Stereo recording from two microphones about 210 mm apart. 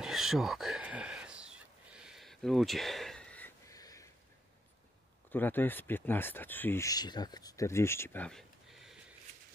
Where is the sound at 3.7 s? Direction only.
15° left (ahead or behind).